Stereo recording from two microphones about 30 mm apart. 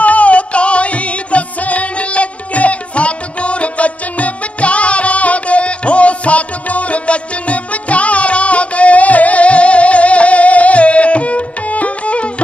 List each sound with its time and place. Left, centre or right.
0.0 s music: left